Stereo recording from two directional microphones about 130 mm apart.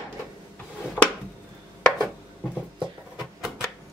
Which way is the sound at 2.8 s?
5° right (ahead or behind).